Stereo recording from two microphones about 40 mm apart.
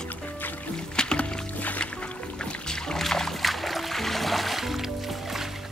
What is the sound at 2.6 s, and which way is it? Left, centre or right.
Music, centre.